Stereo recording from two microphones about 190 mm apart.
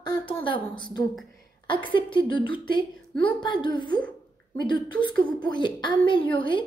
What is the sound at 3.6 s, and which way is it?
A woman's voice, 25° left (ahead or behind).